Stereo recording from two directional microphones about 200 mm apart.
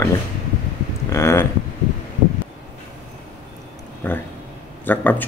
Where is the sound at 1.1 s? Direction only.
15° left (ahead or behind).